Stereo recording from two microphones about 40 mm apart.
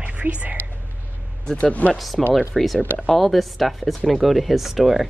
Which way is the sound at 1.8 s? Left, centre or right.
Left.